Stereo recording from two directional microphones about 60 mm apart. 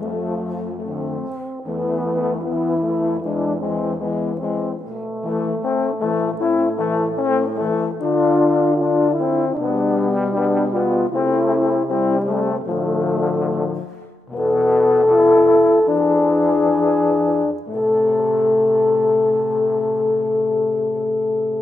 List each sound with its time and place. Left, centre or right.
1.9 s brass instrument: centre
5.3 s brass instrument: left
9.9 s brass instrument: centre
10.8 s brass instrument: left
11.3 s brass instrument: centre
11.6 s brass instrument: left
13.1 s brass instrument: centre
17.9 s music: centre